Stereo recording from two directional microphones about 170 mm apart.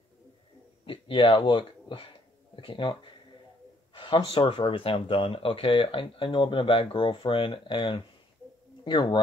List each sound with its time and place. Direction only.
0.8 s speech: 30° left (ahead or behind)